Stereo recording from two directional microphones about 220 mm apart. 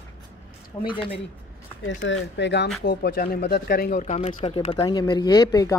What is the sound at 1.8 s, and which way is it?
Speech, 55° left (ahead or behind).